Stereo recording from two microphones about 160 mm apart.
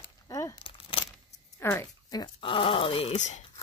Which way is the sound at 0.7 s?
35° left (ahead or behind).